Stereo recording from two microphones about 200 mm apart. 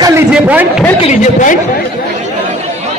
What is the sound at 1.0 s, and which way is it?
Speech, 35° left (ahead or behind).